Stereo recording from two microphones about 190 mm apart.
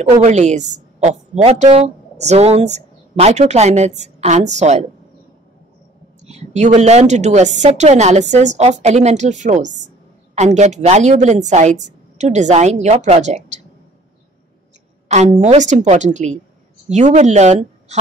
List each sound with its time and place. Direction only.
0.2 s a woman's voice: 35° right (ahead or behind)
6.2 s a woman's voice: 35° right (ahead or behind)
15.0 s a woman's voice: 40° right (ahead or behind)